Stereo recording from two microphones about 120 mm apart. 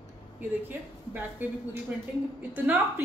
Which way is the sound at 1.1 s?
15° right (ahead or behind).